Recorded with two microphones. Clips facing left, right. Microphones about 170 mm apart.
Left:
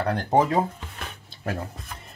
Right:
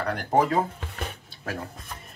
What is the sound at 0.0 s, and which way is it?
Speech, 25° left (ahead or behind).